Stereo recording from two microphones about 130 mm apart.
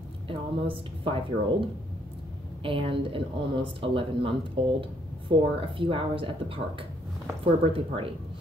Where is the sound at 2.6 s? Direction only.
40° right (ahead or behind).